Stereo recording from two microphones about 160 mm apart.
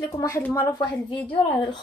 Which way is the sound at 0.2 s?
20° left (ahead or behind).